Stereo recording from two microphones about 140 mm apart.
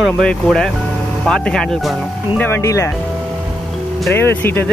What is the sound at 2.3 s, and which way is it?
Speech, 15° left (ahead or behind).